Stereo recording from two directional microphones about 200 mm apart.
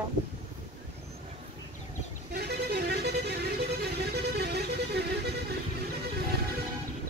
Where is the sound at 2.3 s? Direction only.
55° right (ahead or behind).